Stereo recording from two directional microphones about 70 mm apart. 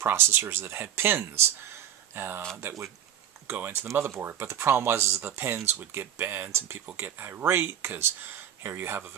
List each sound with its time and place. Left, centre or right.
0.0 s speech: right
3.4 s speech: right
3.7 s speech: right